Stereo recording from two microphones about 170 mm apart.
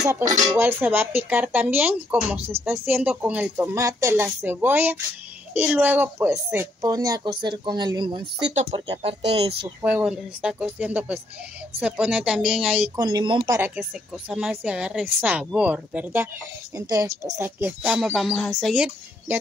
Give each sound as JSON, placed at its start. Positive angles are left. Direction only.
{"t": 0.1, "sound": "speech", "side_deg": -20}
{"t": 8.5, "sound": "speech", "side_deg": -40}
{"t": 9.8, "sound": "speech", "side_deg": -10}
{"t": 12.9, "sound": "speech", "side_deg": -25}
{"t": 14.3, "sound": "speech", "side_deg": -5}
{"t": 17.8, "sound": "speech", "side_deg": -5}